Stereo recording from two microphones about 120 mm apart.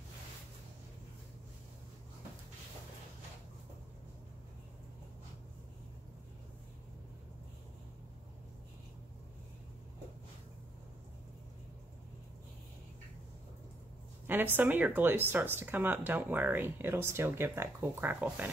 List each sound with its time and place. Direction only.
14.2 s speech: 15° right (ahead or behind)